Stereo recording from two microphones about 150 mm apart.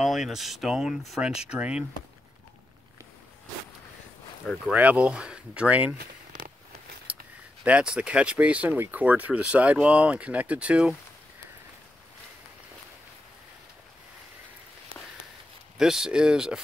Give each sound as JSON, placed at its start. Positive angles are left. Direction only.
{"t": 0.0, "sound": "speech", "side_deg": 0}
{"t": 4.6, "sound": "speech", "side_deg": -10}
{"t": 5.9, "sound": "a sound", "side_deg": -90}
{"t": 7.6, "sound": "speech", "side_deg": -5}
{"t": 15.8, "sound": "speech", "side_deg": -5}